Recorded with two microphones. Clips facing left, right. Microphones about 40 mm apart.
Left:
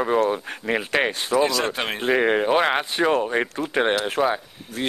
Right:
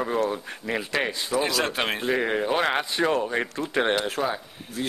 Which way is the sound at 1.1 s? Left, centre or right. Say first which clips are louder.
Left 4 dB; left.